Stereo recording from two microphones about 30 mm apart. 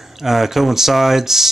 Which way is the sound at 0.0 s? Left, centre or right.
Centre.